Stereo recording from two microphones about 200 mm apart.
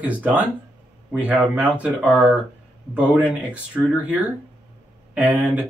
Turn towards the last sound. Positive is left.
turn(degrees=-5)  # may be behind; listen again after turning